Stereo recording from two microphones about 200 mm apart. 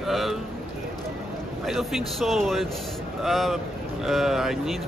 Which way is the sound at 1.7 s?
Centre (ahead or behind).